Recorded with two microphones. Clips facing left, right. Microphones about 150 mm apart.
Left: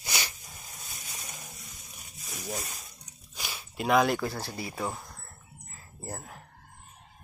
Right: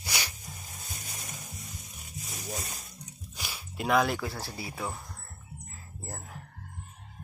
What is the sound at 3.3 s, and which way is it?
Speech, 5° left (ahead or behind).